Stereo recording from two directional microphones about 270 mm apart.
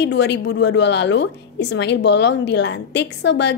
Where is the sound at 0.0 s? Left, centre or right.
Left.